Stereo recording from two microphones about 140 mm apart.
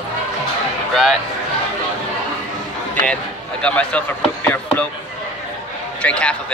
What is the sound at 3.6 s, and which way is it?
Speech, 10° left (ahead or behind).